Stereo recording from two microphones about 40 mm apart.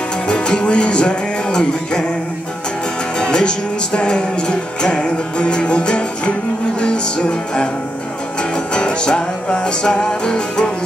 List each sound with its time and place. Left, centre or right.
0.3 s music: left
3.2 s music: left
8.7 s music: left